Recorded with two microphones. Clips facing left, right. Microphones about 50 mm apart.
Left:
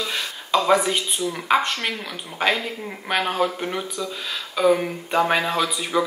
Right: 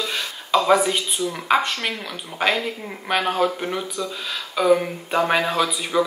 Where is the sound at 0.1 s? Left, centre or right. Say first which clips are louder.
Right 2 dB; centre.